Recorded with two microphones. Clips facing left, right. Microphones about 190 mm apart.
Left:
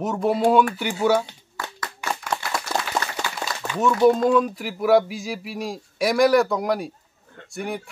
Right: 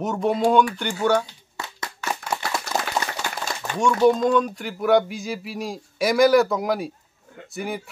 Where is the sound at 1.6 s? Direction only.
25° right (ahead or behind).